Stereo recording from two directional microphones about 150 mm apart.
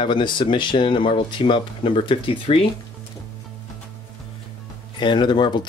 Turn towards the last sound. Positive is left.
turn(degrees=30)  # may be behind; listen again after turning